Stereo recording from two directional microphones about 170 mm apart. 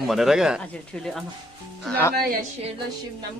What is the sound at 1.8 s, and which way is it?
Speech, 10° left (ahead or behind).